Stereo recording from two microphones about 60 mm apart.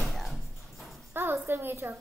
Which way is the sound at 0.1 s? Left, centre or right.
Centre.